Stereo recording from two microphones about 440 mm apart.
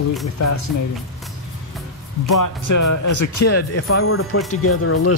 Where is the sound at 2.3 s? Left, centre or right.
Left.